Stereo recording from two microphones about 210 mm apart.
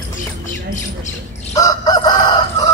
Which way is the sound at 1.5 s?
15° left (ahead or behind).